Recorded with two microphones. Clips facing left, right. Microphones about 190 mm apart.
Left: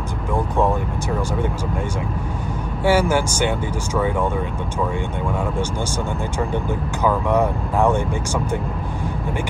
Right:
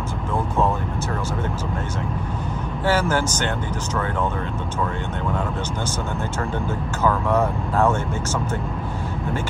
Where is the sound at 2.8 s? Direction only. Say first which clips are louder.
Left 3 dB; 10° left (ahead or behind).